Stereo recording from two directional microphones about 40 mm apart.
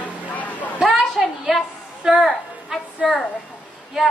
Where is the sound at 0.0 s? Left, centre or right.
Left.